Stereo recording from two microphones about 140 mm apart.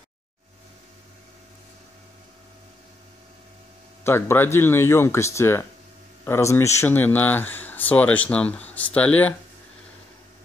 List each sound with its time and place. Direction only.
4.0 s speech: 20° left (ahead or behind)